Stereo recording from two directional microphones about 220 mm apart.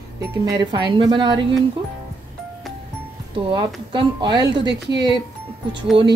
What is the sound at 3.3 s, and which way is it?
A woman's voice, 20° right (ahead or behind).